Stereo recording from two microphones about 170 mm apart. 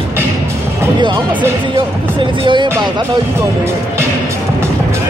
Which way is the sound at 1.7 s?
30° right (ahead or behind).